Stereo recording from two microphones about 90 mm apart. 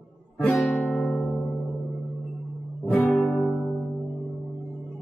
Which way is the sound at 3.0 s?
5° left (ahead or behind).